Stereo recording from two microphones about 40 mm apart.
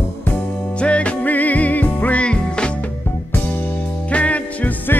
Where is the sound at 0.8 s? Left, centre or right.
Left.